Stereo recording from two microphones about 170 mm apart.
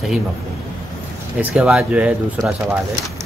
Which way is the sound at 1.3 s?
5° right (ahead or behind).